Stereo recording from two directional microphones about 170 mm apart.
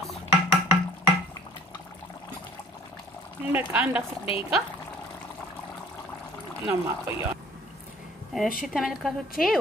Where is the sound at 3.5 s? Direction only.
10° right (ahead or behind).